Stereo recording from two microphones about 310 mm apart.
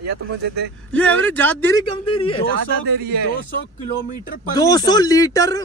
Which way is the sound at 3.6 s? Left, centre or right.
Left.